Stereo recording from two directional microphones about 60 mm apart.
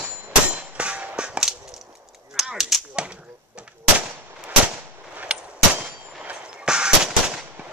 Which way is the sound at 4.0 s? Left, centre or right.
Right.